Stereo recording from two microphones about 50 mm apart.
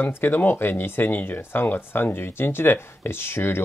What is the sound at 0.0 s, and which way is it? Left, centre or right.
Speech, left.